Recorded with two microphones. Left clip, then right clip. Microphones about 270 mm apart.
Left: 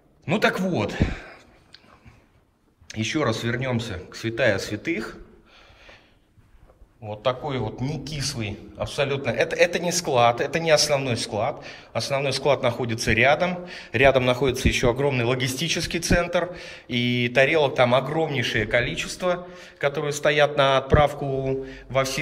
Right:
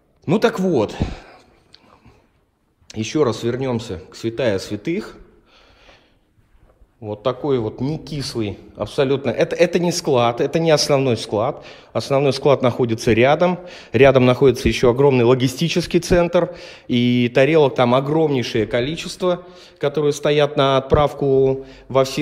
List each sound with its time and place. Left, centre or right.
0.3 s speech: centre
2.9 s speech: centre
7.2 s a man's voice: right